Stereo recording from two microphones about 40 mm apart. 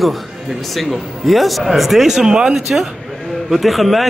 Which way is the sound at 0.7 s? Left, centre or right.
Centre.